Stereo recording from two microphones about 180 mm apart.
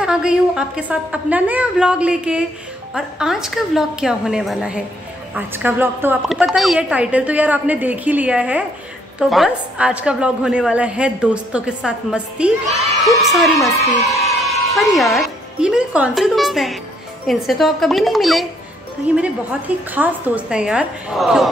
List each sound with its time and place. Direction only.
0.0 s a woman's voice: 5° right (ahead or behind)
14.0 s speech: 20° left (ahead or behind)
14.4 s a woman's voice: centre (ahead or behind)